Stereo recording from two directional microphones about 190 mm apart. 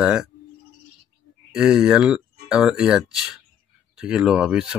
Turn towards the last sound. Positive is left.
turn(degrees=-5)  # may be behind; listen again after turning